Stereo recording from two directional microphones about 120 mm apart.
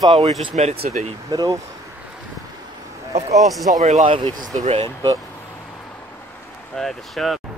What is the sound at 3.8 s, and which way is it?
Speech, 80° right.